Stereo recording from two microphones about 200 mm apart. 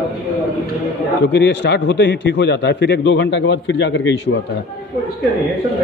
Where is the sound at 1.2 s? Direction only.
60° left (ahead or behind).